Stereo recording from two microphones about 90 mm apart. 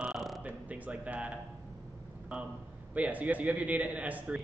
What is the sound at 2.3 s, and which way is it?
A man's voice, 10° right (ahead or behind).